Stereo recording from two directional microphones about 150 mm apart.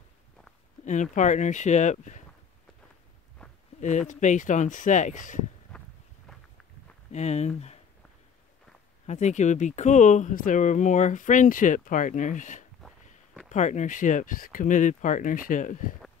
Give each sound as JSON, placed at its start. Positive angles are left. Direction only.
{"t": 1.1, "sound": "speech", "side_deg": 55}
{"t": 4.1, "sound": "speech", "side_deg": 55}
{"t": 5.7, "sound": "walk", "side_deg": 5}
{"t": 7.1, "sound": "speech", "side_deg": 50}
{"t": 9.0, "sound": "speech", "side_deg": 50}